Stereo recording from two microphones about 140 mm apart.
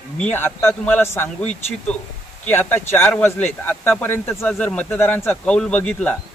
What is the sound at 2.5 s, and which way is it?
Speech, 15° left (ahead or behind).